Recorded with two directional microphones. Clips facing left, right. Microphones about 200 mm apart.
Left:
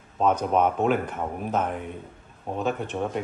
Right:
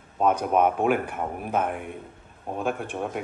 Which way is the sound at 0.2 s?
10° right (ahead or behind).